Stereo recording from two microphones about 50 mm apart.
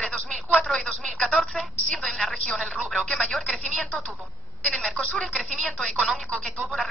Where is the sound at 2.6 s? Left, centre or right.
Centre.